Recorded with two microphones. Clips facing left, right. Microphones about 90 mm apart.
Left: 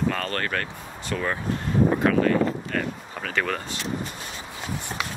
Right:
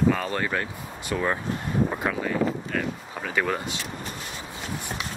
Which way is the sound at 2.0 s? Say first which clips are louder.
Left 5 dB; 10° right (ahead or behind).